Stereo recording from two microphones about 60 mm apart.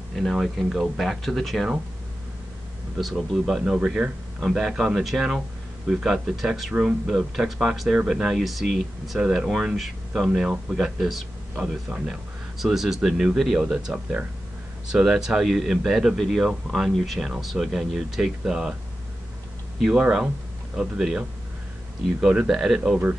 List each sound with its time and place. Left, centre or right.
0.1 s speech: centre
3.0 s speech: centre
3.6 s speech: centre
4.4 s speech: centre
11.5 s speech: right
12.1 s speech: centre
19.8 s speech: centre
22.5 s speech: centre